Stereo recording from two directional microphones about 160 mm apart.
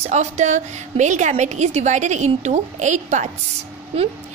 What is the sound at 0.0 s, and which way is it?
A woman's voice, 45° right (ahead or behind).